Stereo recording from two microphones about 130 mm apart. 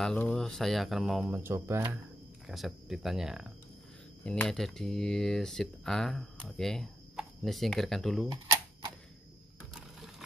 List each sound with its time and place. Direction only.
0.2 s speech: 5° left (ahead or behind)
1.3 s speech: 20° right (ahead or behind)
2.4 s speech: 5° right (ahead or behind)
4.2 s speech: 10° left (ahead or behind)
8.3 s typewriter: 35° right (ahead or behind)
9.9 s sewing machine: centre (ahead or behind)